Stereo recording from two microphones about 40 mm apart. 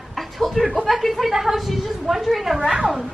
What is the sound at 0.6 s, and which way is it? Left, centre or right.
Speech, right.